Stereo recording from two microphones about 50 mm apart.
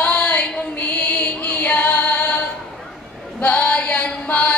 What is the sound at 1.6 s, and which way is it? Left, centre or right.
Music, left.